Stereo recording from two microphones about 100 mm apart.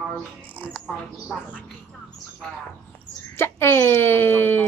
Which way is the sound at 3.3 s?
25° left (ahead or behind).